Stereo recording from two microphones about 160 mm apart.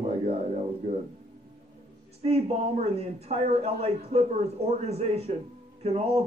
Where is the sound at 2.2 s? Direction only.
40° right (ahead or behind).